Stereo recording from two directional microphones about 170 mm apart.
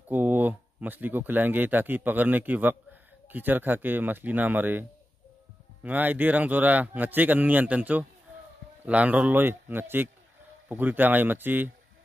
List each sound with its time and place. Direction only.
0.1 s speech: 10° right (ahead or behind)
5.9 s speech: 10° right (ahead or behind)